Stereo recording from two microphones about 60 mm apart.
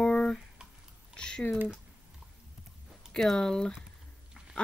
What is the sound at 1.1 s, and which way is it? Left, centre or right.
Typing, centre.